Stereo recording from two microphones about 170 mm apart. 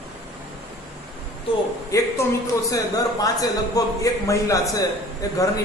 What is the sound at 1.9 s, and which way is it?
A man's voice, 20° left (ahead or behind).